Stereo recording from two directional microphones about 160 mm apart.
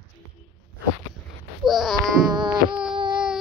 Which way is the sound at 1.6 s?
Centre (ahead or behind).